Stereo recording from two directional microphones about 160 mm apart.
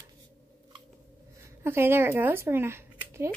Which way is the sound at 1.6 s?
15° right (ahead or behind).